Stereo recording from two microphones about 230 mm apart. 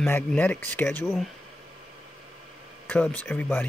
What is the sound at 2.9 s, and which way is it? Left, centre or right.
Speech, centre.